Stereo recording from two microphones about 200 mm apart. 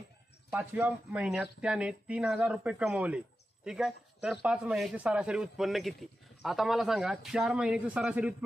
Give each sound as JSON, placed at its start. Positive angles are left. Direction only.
{"t": 0.5, "sound": "speech", "side_deg": -5}